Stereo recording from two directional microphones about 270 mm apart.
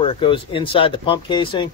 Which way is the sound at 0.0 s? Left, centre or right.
Centre.